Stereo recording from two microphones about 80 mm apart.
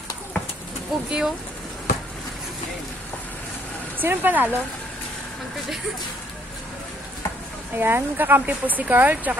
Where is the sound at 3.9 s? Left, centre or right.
Right.